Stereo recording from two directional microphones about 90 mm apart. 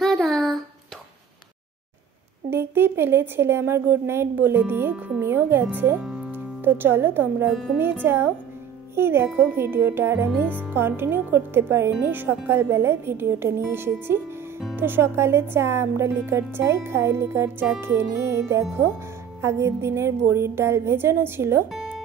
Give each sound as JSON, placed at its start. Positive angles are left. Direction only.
{"t": 0.0, "sound": "a sound", "side_deg": 0}
{"t": 2.5, "sound": "a woman's voice", "side_deg": -25}
{"t": 21.7, "sound": "music", "side_deg": -10}